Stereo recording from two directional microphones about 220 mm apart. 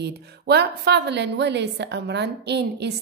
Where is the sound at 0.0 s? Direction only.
50° right (ahead or behind).